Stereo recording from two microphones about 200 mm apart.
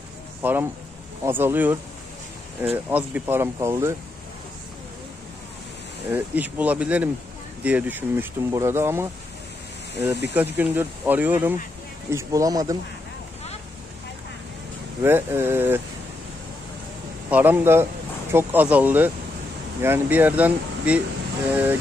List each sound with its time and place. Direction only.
0.4 s speech: 10° right (ahead or behind)
6.1 s speech: 10° right (ahead or behind)
10.3 s speech: 10° right (ahead or behind)
15.0 s speech: 10° right (ahead or behind)
17.3 s speech: 10° right (ahead or behind)